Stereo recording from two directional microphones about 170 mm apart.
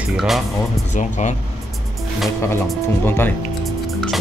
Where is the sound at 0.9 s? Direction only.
45° left (ahead or behind).